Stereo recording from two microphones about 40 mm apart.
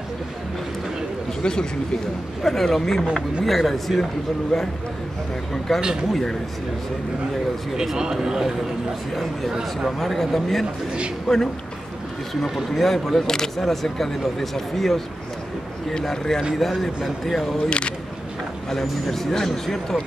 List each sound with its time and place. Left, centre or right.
1.4 s speech: centre
2.4 s a man's voice: centre
5.8 s speech: centre
7.7 s speech: centre
9.1 s a man's voice: centre
9.5 s speech: centre
9.8 s a man's voice: centre
11.3 s speech: centre
12.4 s a man's voice: centre
16.0 s speech: centre
17.6 s speech: left
18.7 s speech: centre